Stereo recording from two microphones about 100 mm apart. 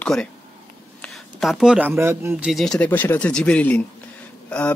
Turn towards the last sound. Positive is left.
turn(degrees=10)  # may be behind; listen again after turning